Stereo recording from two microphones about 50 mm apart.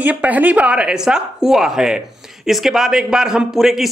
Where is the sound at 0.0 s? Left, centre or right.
Right.